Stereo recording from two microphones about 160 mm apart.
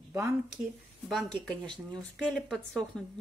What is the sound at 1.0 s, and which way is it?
Speech, 5° left (ahead or behind).